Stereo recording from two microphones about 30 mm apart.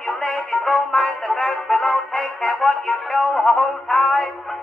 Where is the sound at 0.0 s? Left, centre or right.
Centre.